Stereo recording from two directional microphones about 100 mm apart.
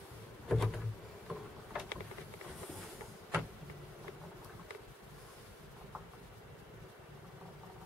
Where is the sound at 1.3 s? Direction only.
5° right (ahead or behind).